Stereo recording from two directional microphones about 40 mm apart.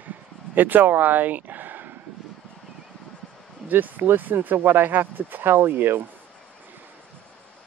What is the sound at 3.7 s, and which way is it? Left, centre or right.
Speech, right.